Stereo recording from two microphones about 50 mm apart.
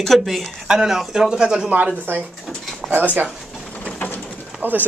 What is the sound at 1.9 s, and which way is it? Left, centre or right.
Speech, right.